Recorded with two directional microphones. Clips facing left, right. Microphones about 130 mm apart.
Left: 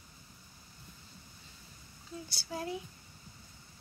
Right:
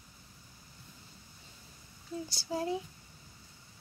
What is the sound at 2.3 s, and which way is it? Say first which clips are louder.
Speech: right 4 dB; 30° right (ahead or behind).